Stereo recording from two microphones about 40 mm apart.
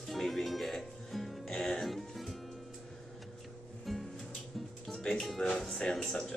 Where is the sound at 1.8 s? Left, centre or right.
Centre.